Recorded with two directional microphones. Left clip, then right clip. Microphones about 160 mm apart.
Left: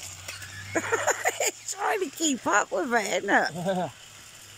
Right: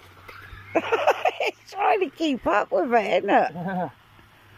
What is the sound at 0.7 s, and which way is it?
Speech, 5° left (ahead or behind).